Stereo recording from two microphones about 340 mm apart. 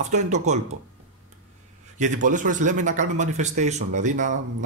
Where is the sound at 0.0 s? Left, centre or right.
Right.